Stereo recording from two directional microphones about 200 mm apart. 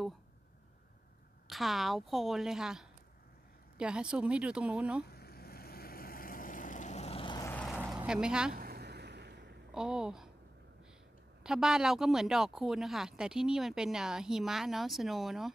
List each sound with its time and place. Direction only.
1.5 s speech: centre (ahead or behind)
5.1 s vehicle: 50° left (ahead or behind); by 7.5 s 20° left (ahead or behind)
7.5 s vehicle: centre (ahead or behind)
7.8 s speech: 5° right (ahead or behind)
8.5 s a sound: 50° right (ahead or behind)
9.8 s speech: 5° right (ahead or behind)
11.4 s speech: 5° right (ahead or behind)